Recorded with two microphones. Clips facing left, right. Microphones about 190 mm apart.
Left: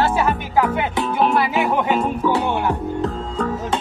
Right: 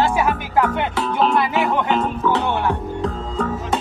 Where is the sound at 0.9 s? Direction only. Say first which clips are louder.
Even; 15° left (ahead or behind).